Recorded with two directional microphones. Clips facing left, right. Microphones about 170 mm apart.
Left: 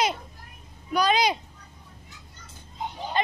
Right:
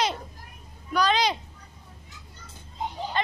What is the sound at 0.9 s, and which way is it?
Speech, 10° left (ahead or behind).